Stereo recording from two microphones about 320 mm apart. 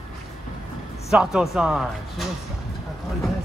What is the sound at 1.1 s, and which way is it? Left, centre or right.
Speech, centre.